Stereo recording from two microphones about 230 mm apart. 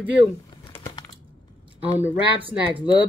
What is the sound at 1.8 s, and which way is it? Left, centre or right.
Speech, centre.